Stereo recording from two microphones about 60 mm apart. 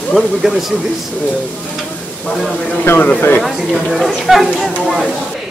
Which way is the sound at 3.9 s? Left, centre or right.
Centre.